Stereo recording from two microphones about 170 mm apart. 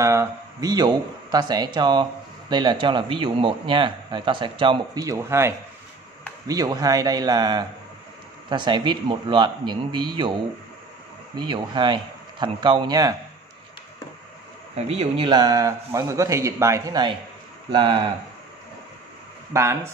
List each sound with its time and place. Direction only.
0.0 s a man's voice: 20° right (ahead or behind)
11.3 s a man's voice: 25° right (ahead or behind)
14.8 s a man's voice: 35° right (ahead or behind)
19.5 s speech: 15° right (ahead or behind)